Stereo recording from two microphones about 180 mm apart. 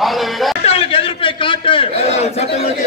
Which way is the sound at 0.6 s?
30° left (ahead or behind).